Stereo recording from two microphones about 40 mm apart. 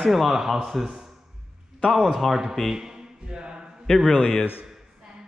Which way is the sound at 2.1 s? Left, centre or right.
Centre.